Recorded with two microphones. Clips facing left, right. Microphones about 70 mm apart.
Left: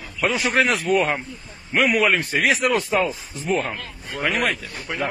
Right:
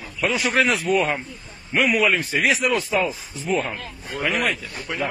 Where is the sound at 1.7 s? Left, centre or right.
Left.